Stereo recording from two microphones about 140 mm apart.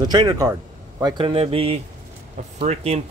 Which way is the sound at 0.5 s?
20° right (ahead or behind).